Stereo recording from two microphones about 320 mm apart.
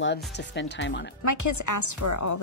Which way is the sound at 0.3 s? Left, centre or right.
Left.